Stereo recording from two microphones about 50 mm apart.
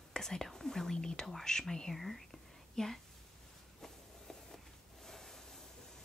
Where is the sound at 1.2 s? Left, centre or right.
Centre.